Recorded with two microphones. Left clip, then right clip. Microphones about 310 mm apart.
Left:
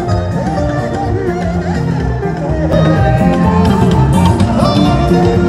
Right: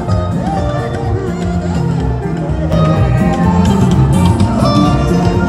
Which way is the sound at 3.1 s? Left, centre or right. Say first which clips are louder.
Left 2 dB; left.